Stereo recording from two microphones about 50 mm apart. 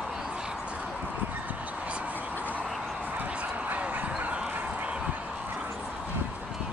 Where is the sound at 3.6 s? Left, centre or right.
Right.